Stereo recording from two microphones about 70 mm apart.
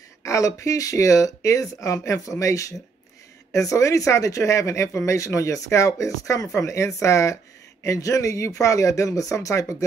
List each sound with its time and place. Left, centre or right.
0.2 s speech: left